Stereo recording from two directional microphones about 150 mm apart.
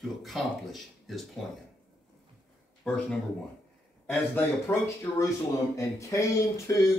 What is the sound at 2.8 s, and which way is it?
Speech, 5° left (ahead or behind).